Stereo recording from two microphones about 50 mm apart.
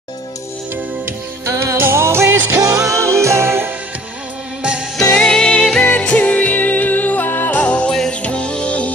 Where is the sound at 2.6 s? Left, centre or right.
Right.